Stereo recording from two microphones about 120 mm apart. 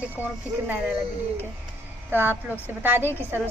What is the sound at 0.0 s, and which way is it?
A woman's voice, 15° right (ahead or behind).